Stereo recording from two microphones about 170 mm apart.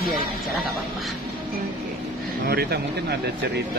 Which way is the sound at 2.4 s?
65° right (ahead or behind).